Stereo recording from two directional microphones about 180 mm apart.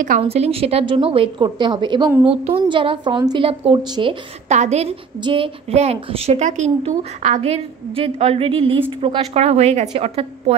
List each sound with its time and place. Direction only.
0.2 s a woman's voice: 35° right (ahead or behind)
4.5 s a woman's voice: 40° right (ahead or behind)